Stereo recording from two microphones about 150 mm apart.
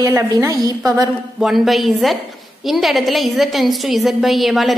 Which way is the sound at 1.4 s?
Centre (ahead or behind).